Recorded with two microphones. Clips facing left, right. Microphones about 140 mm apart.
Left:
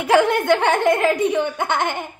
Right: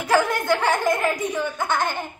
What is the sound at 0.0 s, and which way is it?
A child's voice, 25° left (ahead or behind).